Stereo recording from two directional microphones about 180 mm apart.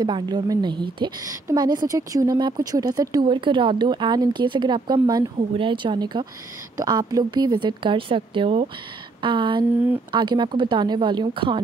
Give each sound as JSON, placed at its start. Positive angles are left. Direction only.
{"t": 0.0, "sound": "a woman's voice", "side_deg": -25}